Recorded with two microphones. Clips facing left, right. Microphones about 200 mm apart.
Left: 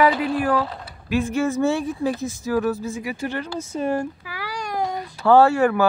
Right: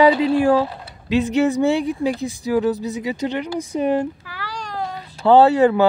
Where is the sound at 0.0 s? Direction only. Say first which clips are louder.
Right 5 dB; 25° right (ahead or behind).